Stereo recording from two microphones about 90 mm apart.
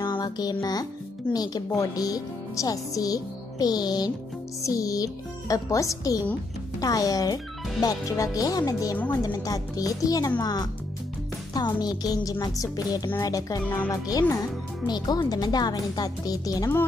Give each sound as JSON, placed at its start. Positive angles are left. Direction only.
{"t": 0.0, "sound": "music", "side_deg": 50}
{"t": 1.3, "sound": "a child's voice", "side_deg": 45}
{"t": 8.4, "sound": "a child's voice", "side_deg": 40}